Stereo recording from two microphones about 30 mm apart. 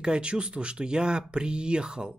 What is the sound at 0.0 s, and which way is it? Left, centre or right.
Speech, right.